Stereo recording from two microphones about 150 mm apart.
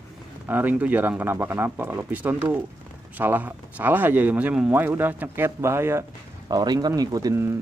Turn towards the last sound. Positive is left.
turn(degrees=-20)  # may be behind; listen again after turning